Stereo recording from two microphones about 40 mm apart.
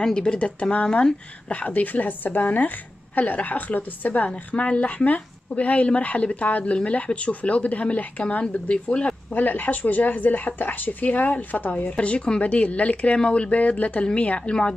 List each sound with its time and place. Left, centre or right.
0.0 s speech: left
1.5 s a woman's voice: left
9.3 s a woman's voice: left
11.9 s speech: left